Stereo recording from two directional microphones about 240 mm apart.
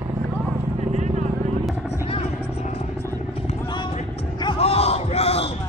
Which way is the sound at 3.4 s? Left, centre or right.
Centre.